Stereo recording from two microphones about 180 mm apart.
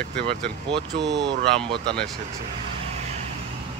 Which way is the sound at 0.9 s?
75° right (ahead or behind).